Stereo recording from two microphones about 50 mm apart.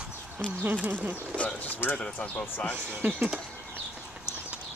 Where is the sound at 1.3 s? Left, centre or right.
Right.